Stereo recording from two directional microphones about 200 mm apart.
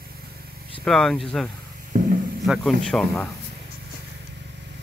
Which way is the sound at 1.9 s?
40° right (ahead or behind).